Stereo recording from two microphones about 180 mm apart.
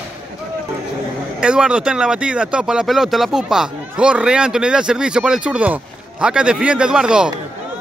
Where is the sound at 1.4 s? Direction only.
5° right (ahead or behind).